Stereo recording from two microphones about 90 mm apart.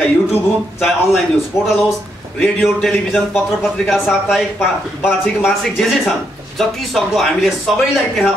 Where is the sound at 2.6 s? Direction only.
5° left (ahead or behind).